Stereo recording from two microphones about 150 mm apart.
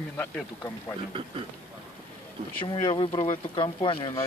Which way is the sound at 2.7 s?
35° left (ahead or behind).